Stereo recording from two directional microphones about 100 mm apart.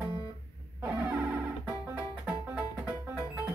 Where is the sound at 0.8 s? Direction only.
15° right (ahead or behind).